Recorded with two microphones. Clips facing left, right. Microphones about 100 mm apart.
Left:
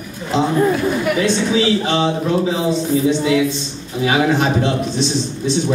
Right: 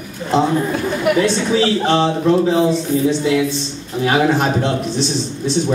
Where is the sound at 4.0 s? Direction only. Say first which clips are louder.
Right 1 dB; 45° right (ahead or behind).